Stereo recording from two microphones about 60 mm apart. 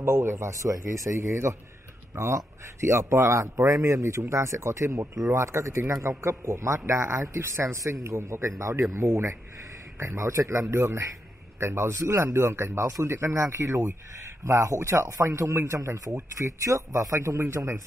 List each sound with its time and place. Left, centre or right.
0.0 s speech: right